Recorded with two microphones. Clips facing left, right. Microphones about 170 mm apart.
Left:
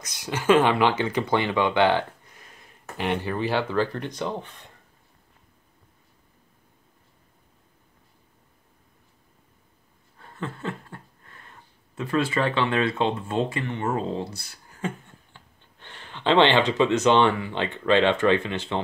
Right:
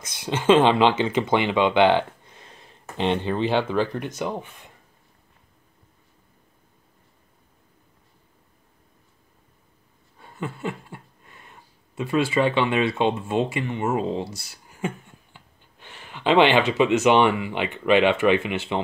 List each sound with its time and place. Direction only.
0.0 s speech: 25° right (ahead or behind); by 4.6 s 10° right (ahead or behind)
10.1 s a sound: 15° right (ahead or behind)
15.3 s speech: 10° right (ahead or behind)